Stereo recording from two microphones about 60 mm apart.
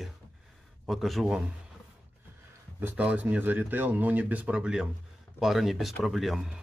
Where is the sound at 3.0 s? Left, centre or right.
Right.